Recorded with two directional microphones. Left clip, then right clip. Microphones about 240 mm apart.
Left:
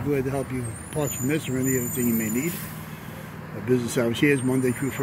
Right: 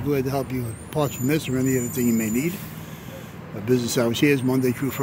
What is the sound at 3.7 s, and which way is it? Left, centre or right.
Speech, centre.